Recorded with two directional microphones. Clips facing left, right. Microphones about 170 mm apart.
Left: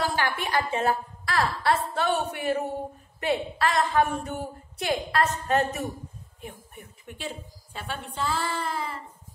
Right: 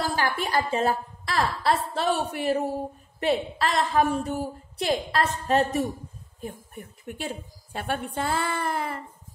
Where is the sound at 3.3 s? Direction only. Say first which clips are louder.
Right 1 dB; 35° right (ahead or behind).